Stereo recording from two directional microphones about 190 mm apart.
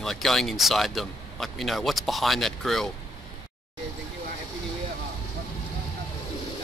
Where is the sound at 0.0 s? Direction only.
Centre (ahead or behind).